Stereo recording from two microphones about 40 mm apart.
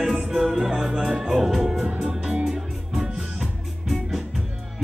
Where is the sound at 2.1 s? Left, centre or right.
Right.